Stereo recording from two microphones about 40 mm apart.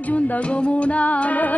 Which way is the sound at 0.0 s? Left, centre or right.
Left.